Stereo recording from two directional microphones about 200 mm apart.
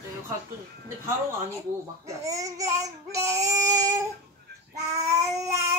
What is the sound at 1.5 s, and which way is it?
A child's voice, 15° right (ahead or behind).